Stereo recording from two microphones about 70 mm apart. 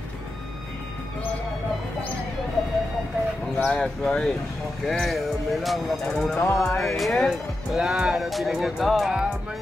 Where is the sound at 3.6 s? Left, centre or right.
Centre.